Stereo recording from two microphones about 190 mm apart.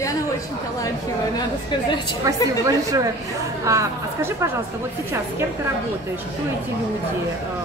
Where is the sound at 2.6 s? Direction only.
15° right (ahead or behind).